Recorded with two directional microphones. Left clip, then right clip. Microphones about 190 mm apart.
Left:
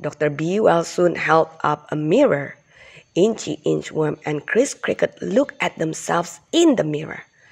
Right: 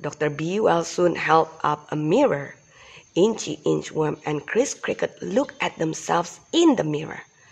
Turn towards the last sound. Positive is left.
turn(degrees=15)  # may be behind; listen again after turning